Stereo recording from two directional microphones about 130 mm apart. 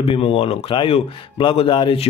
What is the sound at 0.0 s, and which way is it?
Speech, 45° left (ahead or behind).